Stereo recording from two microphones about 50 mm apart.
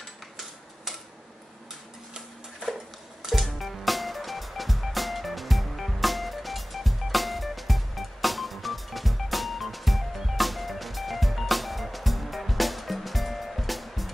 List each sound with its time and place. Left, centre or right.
3.2 s music: centre